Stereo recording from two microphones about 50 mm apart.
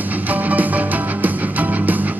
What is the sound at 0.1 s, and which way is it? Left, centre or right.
Music, right.